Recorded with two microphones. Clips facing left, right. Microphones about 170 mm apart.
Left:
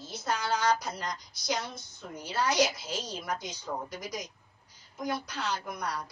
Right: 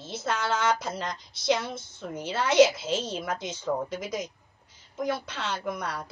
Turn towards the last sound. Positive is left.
turn(degrees=-25)  # may be behind; listen again after turning